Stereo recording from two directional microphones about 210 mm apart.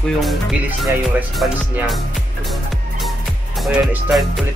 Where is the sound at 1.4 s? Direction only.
Centre (ahead or behind).